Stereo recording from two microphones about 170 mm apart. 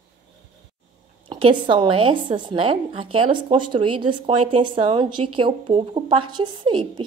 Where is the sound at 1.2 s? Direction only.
30° right (ahead or behind).